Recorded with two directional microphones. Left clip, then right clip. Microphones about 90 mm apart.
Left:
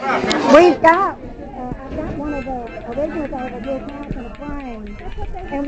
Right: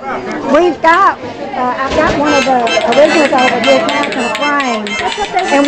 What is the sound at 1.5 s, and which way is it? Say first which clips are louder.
Speech: right 16 dB; 85° right.